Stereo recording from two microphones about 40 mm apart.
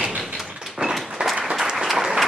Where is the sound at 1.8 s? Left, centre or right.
Centre.